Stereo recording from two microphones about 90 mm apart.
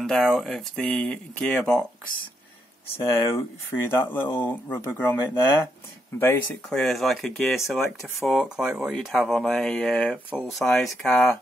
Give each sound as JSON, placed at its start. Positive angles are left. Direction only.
{"t": 0.0, "sound": "speech", "side_deg": 5}
{"t": 2.9, "sound": "speech", "side_deg": 30}
{"t": 6.7, "sound": "speech", "side_deg": 5}